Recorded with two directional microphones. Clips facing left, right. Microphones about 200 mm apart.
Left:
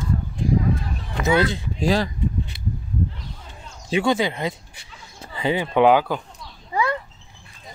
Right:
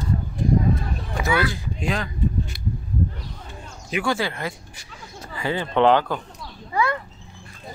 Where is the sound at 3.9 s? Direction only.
20° left (ahead or behind).